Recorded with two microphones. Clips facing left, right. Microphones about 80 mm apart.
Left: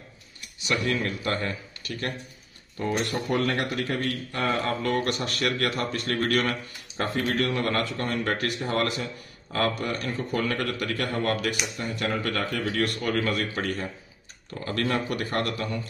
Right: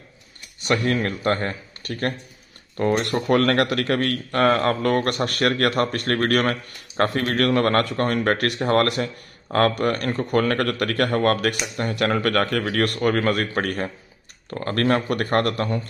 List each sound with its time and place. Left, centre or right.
0.6 s speech: right
2.8 s a man's voice: right
11.7 s a man's voice: right